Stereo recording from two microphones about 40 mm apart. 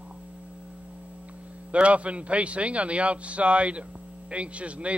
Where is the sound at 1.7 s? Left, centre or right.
Right.